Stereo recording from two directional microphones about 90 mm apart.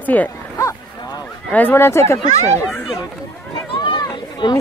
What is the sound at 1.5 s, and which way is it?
Speech, 20° left (ahead or behind).